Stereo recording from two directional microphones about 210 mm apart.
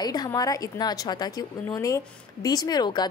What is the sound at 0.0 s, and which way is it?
A woman's voice, 20° left (ahead or behind).